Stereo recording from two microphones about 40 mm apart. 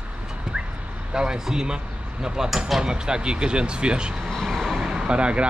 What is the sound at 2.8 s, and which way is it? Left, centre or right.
Speech, right.